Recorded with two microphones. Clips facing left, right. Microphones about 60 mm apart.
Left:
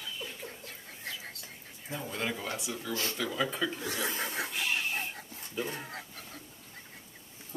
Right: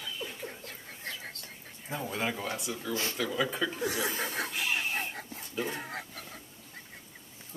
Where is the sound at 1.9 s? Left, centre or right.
Centre.